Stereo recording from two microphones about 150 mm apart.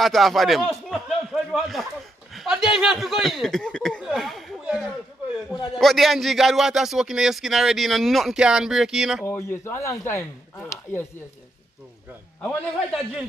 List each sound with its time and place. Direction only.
0.0 s a man's voice: centre (ahead or behind)
9.2 s speech: 15° left (ahead or behind)
12.4 s speech: 5° left (ahead or behind)